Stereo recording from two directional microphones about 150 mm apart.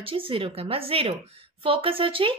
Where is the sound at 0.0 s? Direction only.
40° right (ahead or behind).